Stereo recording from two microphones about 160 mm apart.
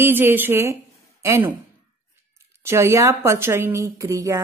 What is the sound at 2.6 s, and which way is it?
Speech, 15° right (ahead or behind).